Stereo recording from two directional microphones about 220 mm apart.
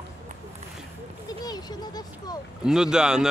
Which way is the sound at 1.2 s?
20° left (ahead or behind).